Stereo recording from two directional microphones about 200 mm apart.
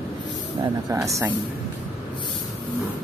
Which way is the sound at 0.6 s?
15° right (ahead or behind).